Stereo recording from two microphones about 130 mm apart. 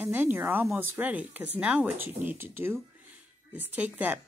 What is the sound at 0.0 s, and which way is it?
Speech, 15° right (ahead or behind).